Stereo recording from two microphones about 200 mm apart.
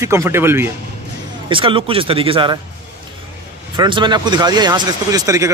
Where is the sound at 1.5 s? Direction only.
25° right (ahead or behind).